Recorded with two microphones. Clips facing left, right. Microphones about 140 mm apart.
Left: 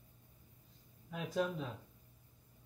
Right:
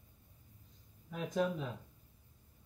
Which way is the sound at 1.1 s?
Centre (ahead or behind).